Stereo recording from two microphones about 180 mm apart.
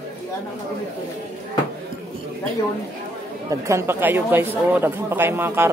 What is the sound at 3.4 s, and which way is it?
Speech, 15° right (ahead or behind).